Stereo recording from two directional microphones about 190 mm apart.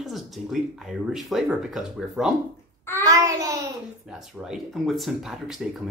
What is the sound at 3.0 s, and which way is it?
Babbling, 15° right (ahead or behind).